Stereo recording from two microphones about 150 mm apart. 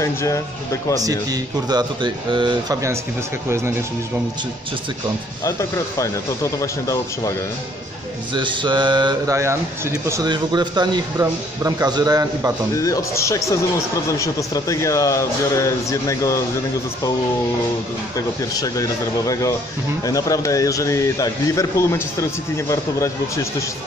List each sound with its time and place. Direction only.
0.0 s a man's voice: 20° left (ahead or behind)
1.0 s a man's voice: 25° right (ahead or behind)
3.4 s speech: 15° right (ahead or behind)
5.4 s a man's voice: 20° left (ahead or behind)
8.4 s mantra: 30° right (ahead or behind)
9.4 s speech: 20° right (ahead or behind)
10.2 s a man's voice: 30° right (ahead or behind)
12.7 s a man's voice: 20° left (ahead or behind)
18.1 s a man's voice: 25° left (ahead or behind)